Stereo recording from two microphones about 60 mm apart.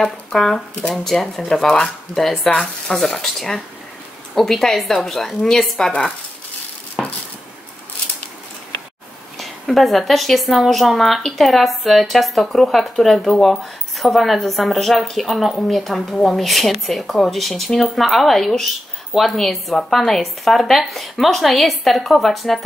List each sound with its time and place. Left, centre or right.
0.0 s a woman's voice: centre
2.5 s speech: centre
3.0 s a woman's voice: centre
7.0 s a sound: centre
9.8 s a woman's voice: centre